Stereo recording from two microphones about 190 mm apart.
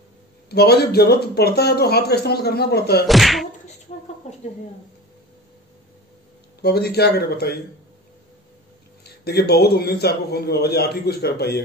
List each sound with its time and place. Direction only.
0.5 s speech: 55° left (ahead or behind)
3.1 s whack: centre (ahead or behind)
4.2 s speech: 40° left (ahead or behind)
6.6 s speech: 55° left (ahead or behind)
9.2 s speech: 55° left (ahead or behind)